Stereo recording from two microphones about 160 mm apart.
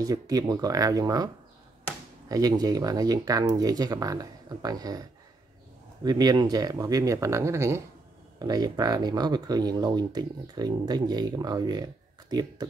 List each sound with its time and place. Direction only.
0.0 s speech: 25° right (ahead or behind)
6.0 s speech: 25° right (ahead or behind)